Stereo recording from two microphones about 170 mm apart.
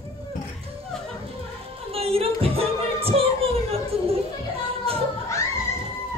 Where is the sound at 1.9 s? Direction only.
35° right (ahead or behind).